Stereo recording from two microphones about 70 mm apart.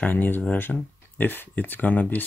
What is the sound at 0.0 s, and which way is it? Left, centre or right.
Speech, left.